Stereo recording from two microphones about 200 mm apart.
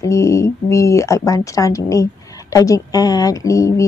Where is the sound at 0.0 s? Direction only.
15° left (ahead or behind).